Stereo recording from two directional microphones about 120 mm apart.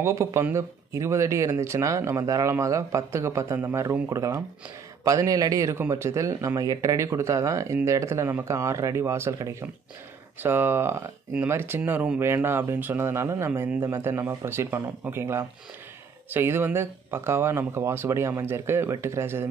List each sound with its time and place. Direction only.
0.0 s speech: 25° right (ahead or behind)